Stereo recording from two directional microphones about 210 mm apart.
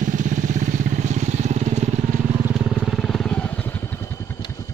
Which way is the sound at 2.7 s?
Centre (ahead or behind).